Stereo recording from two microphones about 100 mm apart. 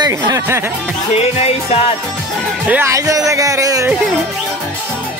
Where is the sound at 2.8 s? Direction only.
35° right (ahead or behind).